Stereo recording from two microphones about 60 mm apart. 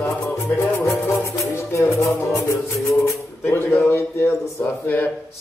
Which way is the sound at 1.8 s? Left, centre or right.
Left.